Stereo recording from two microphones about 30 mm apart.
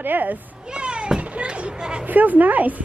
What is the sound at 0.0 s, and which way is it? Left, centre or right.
Speech, right.